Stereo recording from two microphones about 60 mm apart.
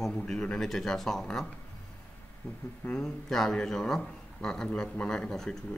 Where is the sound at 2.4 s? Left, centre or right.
Left.